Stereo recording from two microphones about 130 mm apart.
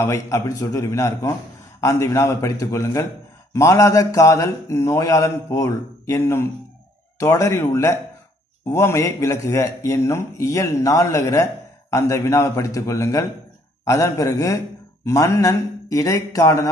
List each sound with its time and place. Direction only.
0.0 s a man's voice: 25° left (ahead or behind)